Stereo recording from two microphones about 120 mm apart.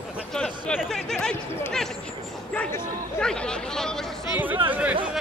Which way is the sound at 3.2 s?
5° left (ahead or behind).